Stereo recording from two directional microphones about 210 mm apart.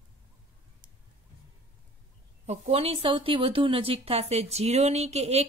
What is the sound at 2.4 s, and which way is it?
Speech, 30° right (ahead or behind).